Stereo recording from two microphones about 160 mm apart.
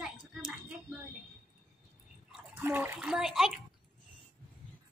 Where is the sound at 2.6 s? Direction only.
15° right (ahead or behind).